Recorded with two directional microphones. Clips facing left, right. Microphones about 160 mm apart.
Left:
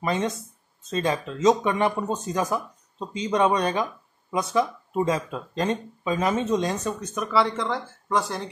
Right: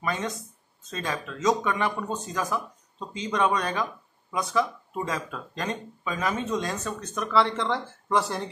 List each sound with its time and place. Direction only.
0.0 s speech: 25° left (ahead or behind)
7.2 s speech: 5° left (ahead or behind)